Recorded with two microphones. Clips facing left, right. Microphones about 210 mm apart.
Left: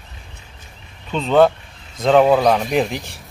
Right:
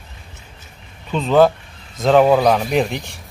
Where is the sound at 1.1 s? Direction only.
Centre (ahead or behind).